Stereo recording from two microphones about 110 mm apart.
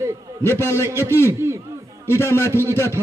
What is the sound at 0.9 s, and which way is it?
Speech, 25° right (ahead or behind).